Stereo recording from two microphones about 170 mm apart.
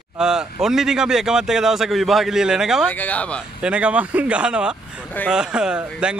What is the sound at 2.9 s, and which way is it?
Speech, 10° left (ahead or behind).